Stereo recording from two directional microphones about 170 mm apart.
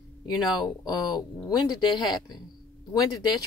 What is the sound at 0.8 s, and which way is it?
Speech, 25° left (ahead or behind).